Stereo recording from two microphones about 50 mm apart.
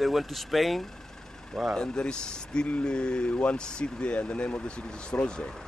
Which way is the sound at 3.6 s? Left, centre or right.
Centre.